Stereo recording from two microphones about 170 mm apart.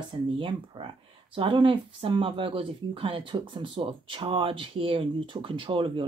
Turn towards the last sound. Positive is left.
turn(degrees=-30)  # may be behind; listen again after turning